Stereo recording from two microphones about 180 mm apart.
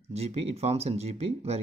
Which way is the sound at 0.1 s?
35° right (ahead or behind).